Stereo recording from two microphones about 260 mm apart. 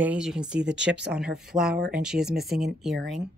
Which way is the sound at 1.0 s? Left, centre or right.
Centre.